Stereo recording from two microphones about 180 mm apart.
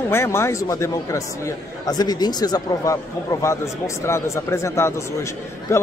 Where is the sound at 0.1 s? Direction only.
15° left (ahead or behind).